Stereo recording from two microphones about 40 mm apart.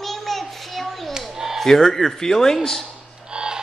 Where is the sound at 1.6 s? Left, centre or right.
Centre.